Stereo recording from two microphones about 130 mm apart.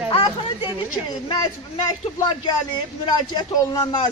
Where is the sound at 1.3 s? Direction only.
25° left (ahead or behind).